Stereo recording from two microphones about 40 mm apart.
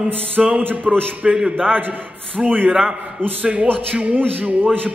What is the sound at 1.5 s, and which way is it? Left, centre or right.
Speech, centre.